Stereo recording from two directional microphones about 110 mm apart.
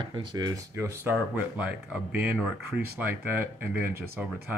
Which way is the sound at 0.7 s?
25° right (ahead or behind).